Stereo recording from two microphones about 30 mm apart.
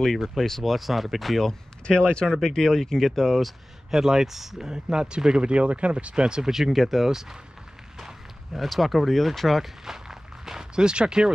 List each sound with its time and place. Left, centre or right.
0.2 s speech: centre
0.5 s speech: centre
0.7 s speech: centre
1.9 s speech: left
2.5 s speech: centre
3.9 s speech: centre
4.6 s speech: right
5.4 s speech: right
6.1 s speech: right
6.7 s speech: centre
8.5 s speech: centre
9.8 s walk: centre
10.8 s speech: right